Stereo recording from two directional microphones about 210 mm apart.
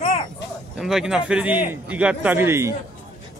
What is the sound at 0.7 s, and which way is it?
Speech, centre (ahead or behind).